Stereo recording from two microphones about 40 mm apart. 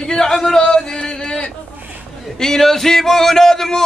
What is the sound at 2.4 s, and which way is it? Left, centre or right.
Speech, centre.